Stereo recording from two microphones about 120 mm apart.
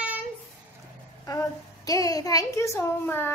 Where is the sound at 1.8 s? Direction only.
30° left (ahead or behind).